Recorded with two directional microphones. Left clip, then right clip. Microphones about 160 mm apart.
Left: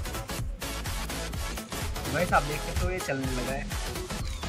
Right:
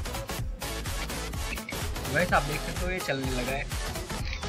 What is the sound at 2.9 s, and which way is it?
Speech, 10° right (ahead or behind).